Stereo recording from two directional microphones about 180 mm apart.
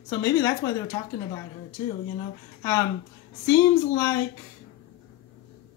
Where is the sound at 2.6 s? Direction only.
20° left (ahead or behind).